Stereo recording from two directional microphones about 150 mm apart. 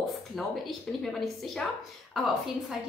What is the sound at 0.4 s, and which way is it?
A woman's voice, centre (ahead or behind).